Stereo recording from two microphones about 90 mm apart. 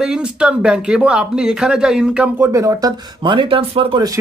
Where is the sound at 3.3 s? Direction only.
90° right.